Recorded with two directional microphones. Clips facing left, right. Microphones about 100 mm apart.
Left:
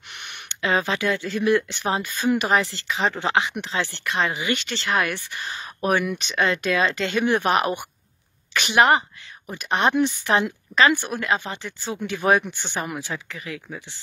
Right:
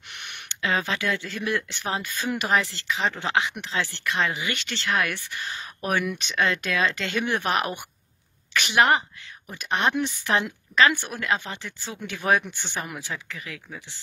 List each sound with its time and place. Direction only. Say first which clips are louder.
0.5 s speech: left 3 dB; 20° left (ahead or behind)